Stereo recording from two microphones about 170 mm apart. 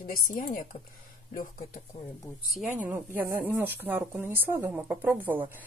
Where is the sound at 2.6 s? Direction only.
10° right (ahead or behind).